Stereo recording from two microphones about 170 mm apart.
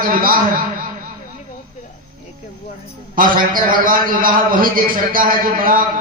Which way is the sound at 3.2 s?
55° right (ahead or behind).